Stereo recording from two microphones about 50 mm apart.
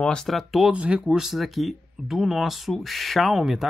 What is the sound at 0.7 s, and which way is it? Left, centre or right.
Speech, right.